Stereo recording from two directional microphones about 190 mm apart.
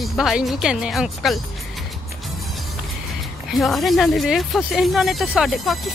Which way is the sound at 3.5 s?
Centre (ahead or behind).